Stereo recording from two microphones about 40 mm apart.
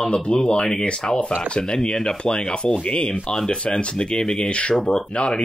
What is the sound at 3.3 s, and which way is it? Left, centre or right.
Speech, centre.